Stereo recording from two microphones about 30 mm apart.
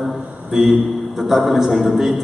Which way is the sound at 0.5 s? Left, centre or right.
Centre.